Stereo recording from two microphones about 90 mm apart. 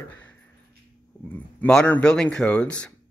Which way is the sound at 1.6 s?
10° left (ahead or behind).